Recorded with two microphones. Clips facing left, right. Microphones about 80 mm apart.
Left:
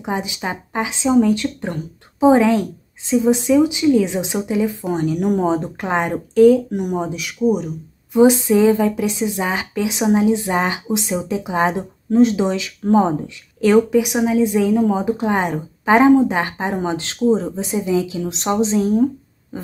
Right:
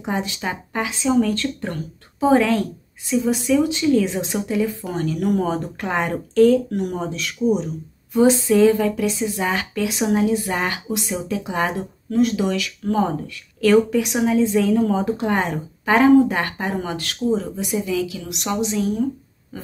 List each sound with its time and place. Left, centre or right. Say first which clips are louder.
0.1 s a woman's voice: left 1 dB; centre; by 19.0 s left